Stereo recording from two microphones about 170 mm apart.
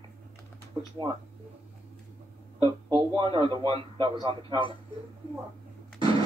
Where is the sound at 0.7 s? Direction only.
25° right (ahead or behind).